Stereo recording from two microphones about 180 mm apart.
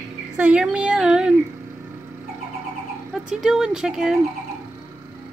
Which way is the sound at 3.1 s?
Centre (ahead or behind).